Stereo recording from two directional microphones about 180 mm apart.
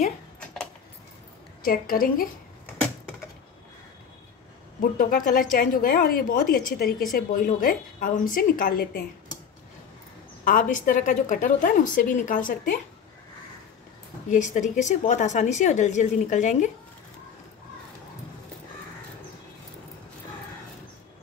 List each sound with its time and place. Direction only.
1.6 s a woman's voice: 50° left (ahead or behind)
4.9 s a woman's voice: 50° left (ahead or behind)
10.4 s a woman's voice: 50° left (ahead or behind)
14.3 s a woman's voice: 45° left (ahead or behind)